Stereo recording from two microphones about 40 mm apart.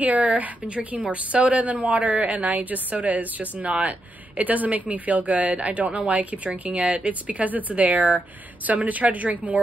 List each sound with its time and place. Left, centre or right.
0.0 s a woman's voice: right